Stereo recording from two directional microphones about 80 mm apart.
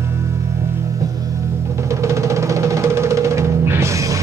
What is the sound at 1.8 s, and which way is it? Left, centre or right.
Music, right.